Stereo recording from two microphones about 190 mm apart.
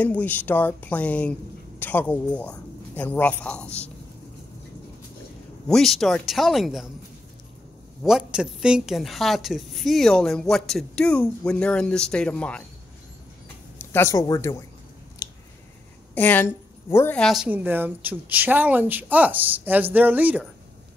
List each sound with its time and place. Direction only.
0.0 s a man's voice: 10° left (ahead or behind)
5.7 s a woman's voice: centre (ahead or behind)
8.0 s a woman's voice: 5° right (ahead or behind)
13.7 s speech: 15° left (ahead or behind)
15.2 s squish: 15° left (ahead or behind)
16.2 s a man's voice: 10° left (ahead or behind); by 20.4 s 10° right (ahead or behind)